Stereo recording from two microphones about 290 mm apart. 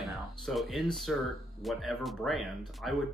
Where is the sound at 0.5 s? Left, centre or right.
Centre.